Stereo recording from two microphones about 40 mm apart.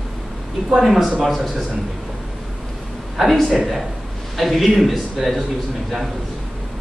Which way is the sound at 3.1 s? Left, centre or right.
Centre.